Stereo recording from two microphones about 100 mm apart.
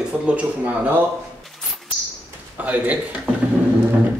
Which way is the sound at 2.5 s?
15° right (ahead or behind).